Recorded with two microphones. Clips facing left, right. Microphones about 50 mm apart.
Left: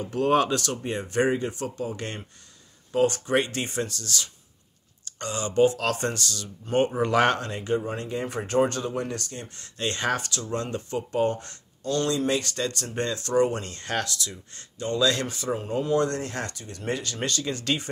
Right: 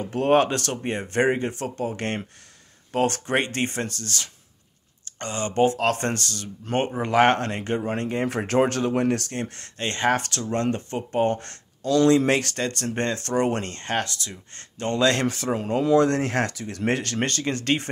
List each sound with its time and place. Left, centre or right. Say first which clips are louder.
0.0 s speech: right 3 dB; right
7.0 s speech: right 5 dB; right
7.3 s speech: right 1 dB; right
8.3 s speech: right 1 dB; right
9.8 s speech: right 4 dB; right
10.1 s speech: right 4 dB; right
11.2 s speech: right 3 dB; right
11.8 s speech: right 7 dB; right
12.5 s speech: right 2 dB; right
13.7 s speech: right 2 dB; right
14.5 s speech: right 3 dB; right